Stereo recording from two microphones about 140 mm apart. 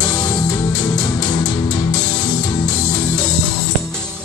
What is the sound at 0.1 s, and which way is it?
Music, 30° left (ahead or behind).